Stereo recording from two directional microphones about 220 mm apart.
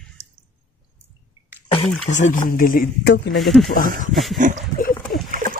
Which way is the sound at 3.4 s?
Centre (ahead or behind).